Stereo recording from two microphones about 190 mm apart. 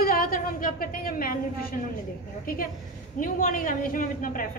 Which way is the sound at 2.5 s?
50° left (ahead or behind).